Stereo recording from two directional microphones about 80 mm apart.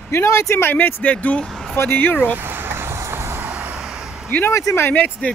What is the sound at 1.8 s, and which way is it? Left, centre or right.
Speech, left.